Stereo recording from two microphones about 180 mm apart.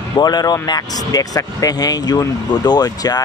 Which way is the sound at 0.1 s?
20° left (ahead or behind).